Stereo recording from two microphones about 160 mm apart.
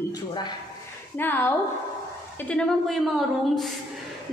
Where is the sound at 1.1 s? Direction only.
15° left (ahead or behind).